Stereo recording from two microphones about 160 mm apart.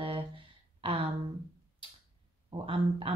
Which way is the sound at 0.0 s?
35° right (ahead or behind).